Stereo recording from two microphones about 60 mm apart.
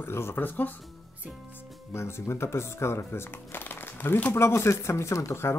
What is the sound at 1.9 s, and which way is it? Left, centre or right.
Speech, left.